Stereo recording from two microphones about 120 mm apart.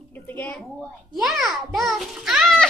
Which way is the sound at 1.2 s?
Centre (ahead or behind).